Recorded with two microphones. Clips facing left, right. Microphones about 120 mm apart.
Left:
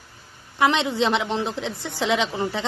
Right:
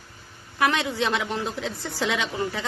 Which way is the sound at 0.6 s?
20° left (ahead or behind).